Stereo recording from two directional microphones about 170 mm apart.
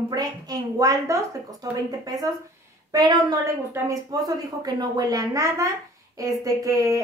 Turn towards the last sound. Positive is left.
turn(degrees=-20)  # may be behind; listen again after turning